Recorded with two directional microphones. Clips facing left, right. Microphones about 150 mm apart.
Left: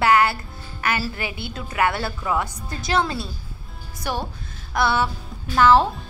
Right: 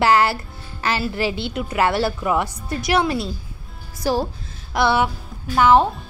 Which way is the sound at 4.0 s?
35° right (ahead or behind).